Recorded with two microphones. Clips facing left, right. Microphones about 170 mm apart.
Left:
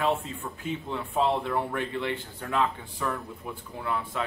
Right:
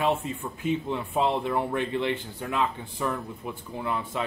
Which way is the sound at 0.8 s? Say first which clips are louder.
Left 4 dB; 15° right (ahead or behind).